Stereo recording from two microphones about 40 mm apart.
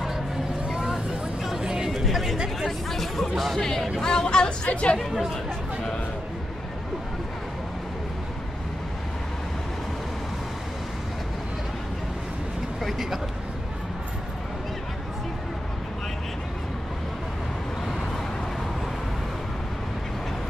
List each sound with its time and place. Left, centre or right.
0.7 s vehicle: centre
1.6 s a sound: centre
1.9 s chatter: centre
2.9 s speech: centre; by 4.9 s left
4.9 s speech: centre
12.8 s vehicle: centre